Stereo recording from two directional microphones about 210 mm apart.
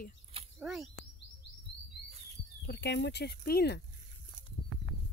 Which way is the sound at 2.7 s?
55° left (ahead or behind).